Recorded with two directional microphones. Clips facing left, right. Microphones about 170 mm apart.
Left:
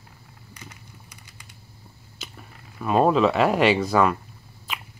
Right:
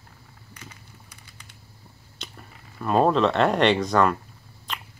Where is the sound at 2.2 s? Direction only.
5° left (ahead or behind).